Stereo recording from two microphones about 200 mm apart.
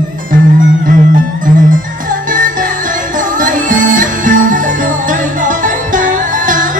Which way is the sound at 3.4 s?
40° right (ahead or behind).